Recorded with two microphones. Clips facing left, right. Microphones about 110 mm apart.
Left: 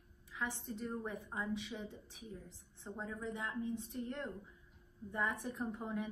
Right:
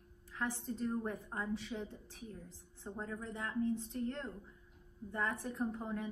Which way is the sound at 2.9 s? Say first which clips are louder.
Right 2 dB; 20° right (ahead or behind).